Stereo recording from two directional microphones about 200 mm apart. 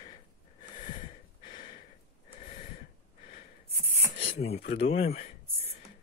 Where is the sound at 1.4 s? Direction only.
40° left (ahead or behind).